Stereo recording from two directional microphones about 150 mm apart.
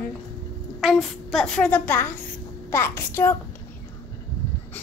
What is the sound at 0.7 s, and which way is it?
A woman's voice, centre (ahead or behind).